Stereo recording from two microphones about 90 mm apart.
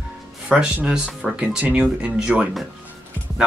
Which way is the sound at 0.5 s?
10° right (ahead or behind).